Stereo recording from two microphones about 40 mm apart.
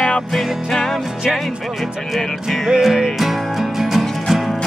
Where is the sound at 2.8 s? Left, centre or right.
Centre.